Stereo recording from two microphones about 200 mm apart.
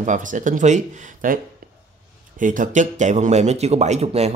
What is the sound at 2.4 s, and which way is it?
Speech, 40° right (ahead or behind).